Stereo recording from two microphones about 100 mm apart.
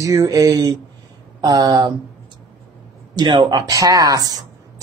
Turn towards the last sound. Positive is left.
turn(degrees=-40)  # may be behind; listen again after turning